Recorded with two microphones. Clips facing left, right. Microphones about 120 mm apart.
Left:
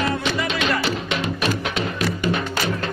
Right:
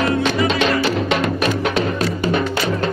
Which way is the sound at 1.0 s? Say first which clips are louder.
Right 6 dB; 55° right (ahead or behind).